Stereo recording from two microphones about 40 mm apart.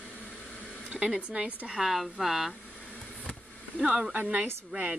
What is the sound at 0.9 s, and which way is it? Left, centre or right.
Speech, right.